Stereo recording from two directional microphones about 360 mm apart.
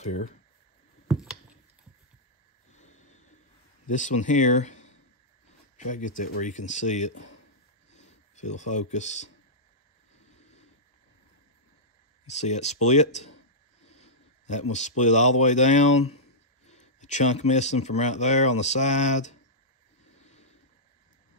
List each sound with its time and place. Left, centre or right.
1.0 s clicking: centre
2.7 s snort: centre
3.8 s speech: left
12.3 s speech: centre
20.2 s a sound: centre